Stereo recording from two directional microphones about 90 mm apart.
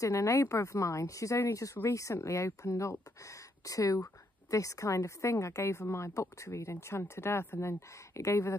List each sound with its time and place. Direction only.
0.0 s speech: 35° left (ahead or behind)